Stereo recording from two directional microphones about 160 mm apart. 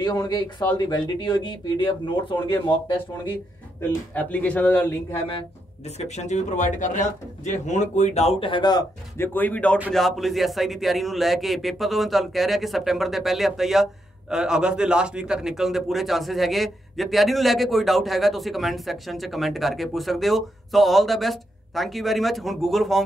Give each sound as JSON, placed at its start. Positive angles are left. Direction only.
{"t": 0.0, "sound": "speech", "side_deg": 25}
{"t": 4.1, "sound": "speech", "side_deg": 10}
{"t": 5.9, "sound": "speech", "side_deg": 45}
{"t": 9.2, "sound": "a man's voice", "side_deg": 10}